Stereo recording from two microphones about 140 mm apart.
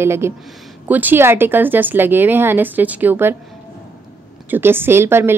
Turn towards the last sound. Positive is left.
turn(degrees=-15)  # may be behind; listen again after turning